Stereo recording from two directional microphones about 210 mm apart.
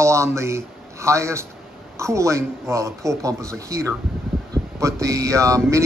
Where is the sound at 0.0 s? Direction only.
15° right (ahead or behind).